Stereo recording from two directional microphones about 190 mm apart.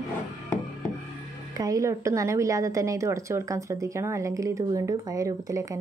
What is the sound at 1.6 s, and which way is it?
A woman's voice, 15° right (ahead or behind).